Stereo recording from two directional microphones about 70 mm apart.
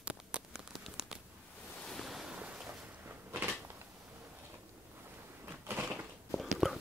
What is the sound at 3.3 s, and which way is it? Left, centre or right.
Cupboard open or close, right.